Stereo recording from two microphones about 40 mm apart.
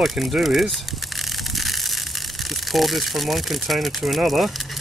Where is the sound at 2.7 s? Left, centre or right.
Centre.